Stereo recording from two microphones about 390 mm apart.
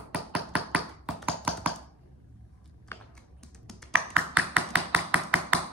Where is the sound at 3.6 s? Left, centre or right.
Centre.